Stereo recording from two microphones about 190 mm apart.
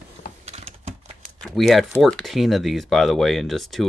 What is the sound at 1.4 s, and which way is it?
Speech, centre (ahead or behind).